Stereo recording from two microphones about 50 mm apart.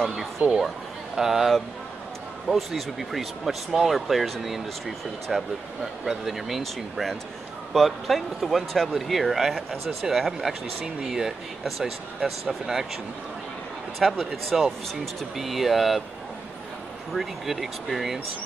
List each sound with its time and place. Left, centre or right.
0.4 s a woman's voice: right
1.1 s speech: centre
17.1 s speech: centre